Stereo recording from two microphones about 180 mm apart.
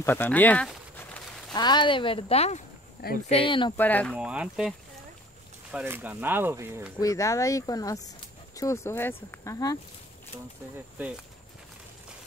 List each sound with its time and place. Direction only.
0.0 s speech: 10° left (ahead or behind)
1.5 s speech: 25° left (ahead or behind)
3.7 s speech: 10° left (ahead or behind)
4.2 s speech: 5° right (ahead or behind)
7.0 s speech: 15° left (ahead or behind)